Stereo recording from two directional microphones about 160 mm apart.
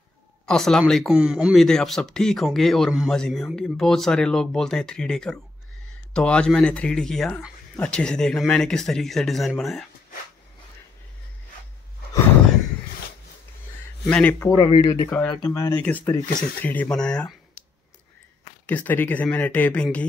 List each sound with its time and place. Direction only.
0.5 s speech: 5° left (ahead or behind)
14.0 s speech: 10° left (ahead or behind)
14.6 s speech: 25° left (ahead or behind)
15.0 s speech: 5° left (ahead or behind)
18.7 s speech: 10° left (ahead or behind)